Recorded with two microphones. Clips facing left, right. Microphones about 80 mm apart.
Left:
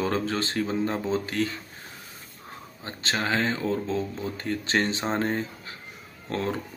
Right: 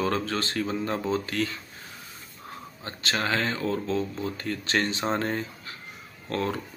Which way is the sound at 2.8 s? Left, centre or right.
Left.